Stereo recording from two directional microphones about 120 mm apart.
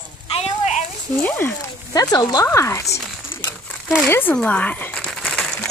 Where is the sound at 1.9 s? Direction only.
30° left (ahead or behind).